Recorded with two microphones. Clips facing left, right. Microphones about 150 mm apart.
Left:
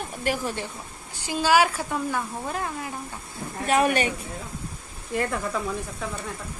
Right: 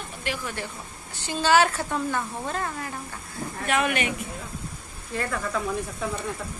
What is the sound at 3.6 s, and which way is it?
Speech, 35° left (ahead or behind).